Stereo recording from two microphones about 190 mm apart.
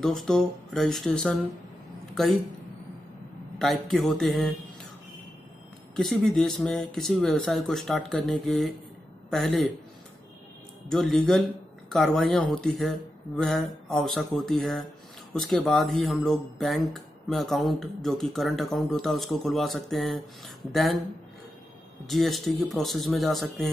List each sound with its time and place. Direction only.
0.0 s speech: centre (ahead or behind)
3.5 s speech: centre (ahead or behind)
5.9 s speech: centre (ahead or behind)
10.9 s speech: centre (ahead or behind)
22.0 s speech: centre (ahead or behind)